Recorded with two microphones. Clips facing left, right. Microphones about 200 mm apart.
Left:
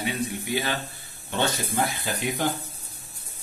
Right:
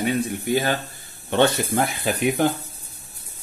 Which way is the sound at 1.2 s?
65° right (ahead or behind).